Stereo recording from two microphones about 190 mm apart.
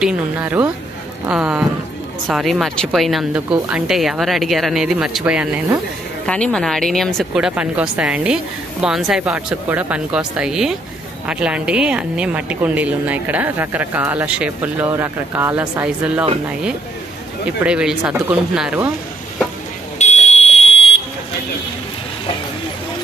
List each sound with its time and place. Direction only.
0.0 s a woman's voice: 10° right (ahead or behind)
6.2 s a woman's voice: 5° left (ahead or behind)
17.6 s speech: 5° right (ahead or behind)
20.0 s fire alarm: 35° left (ahead or behind)